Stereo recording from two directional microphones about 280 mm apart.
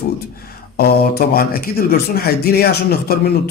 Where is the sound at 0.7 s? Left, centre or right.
Left.